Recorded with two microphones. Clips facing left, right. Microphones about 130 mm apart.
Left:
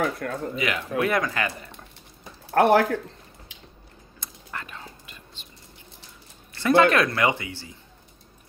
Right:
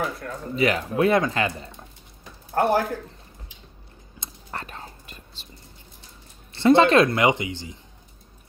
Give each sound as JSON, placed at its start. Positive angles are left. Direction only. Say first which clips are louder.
{"t": 0.0, "sound": "speech", "louder": "left 3 dB", "side_deg": 60}
{"t": 0.6, "sound": "a man's voice", "louder": "right 6 dB", "side_deg": -35}
{"t": 2.5, "sound": "speech", "louder": "left 3 dB", "side_deg": 80}
{"t": 4.5, "sound": "whispering", "louder": "right 2 dB", "side_deg": -35}
{"t": 6.5, "sound": "a man's voice", "louder": "right 3 dB", "side_deg": -25}